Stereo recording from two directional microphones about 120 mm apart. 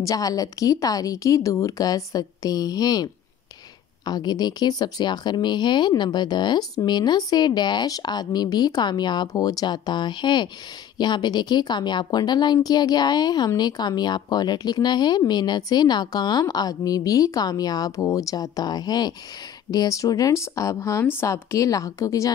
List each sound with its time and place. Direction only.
0.1 s a woman's voice: 30° left (ahead or behind)